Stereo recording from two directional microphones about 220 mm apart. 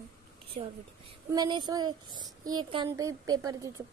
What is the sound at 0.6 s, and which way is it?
A woman's voice, 25° right (ahead or behind).